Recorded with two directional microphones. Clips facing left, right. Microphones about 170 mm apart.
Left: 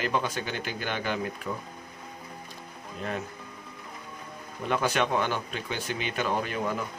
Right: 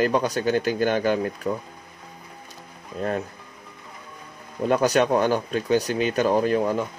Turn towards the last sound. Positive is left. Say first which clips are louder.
# right 9 dB
turn(degrees=-35)  # may be behind; listen again after turning